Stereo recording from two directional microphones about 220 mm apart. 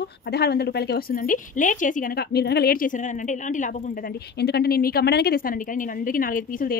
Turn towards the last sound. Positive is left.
turn(degrees=40)  # may be behind; listen again after turning